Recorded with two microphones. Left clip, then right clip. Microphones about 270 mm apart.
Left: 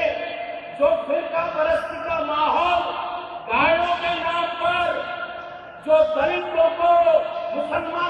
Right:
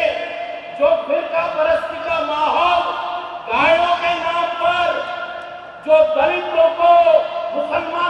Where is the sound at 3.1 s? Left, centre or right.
Centre.